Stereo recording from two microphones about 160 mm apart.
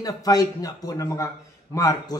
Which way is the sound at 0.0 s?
25° left (ahead or behind).